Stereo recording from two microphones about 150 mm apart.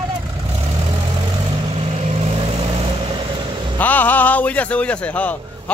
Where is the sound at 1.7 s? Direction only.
40° right (ahead or behind).